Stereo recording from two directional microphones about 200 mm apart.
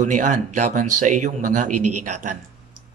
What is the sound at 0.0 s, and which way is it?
Speech, 40° right (ahead or behind).